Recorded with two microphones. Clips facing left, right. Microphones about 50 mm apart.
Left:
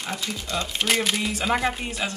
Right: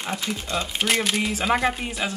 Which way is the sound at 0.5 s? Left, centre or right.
Centre.